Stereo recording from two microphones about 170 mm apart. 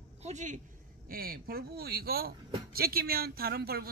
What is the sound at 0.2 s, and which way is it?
Speech, 45° right (ahead or behind).